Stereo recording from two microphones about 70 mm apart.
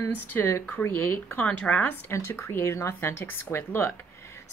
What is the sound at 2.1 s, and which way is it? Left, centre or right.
Speech, left.